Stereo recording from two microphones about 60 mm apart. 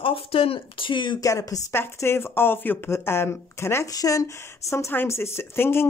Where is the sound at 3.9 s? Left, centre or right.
Left.